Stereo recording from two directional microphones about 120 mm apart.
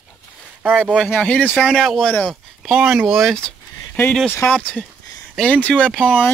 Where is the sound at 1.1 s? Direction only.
10° left (ahead or behind).